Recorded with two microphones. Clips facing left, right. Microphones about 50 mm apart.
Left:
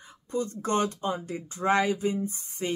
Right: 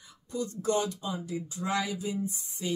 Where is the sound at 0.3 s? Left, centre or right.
Left.